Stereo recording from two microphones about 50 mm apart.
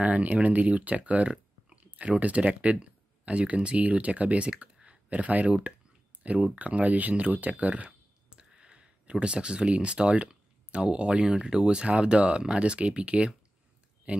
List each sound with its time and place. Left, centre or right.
0.0 s speech: right